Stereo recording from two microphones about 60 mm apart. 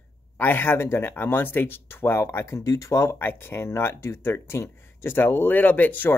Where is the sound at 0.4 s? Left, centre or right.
Left.